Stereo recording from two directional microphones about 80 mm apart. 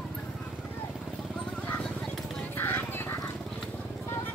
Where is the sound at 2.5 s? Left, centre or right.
Left.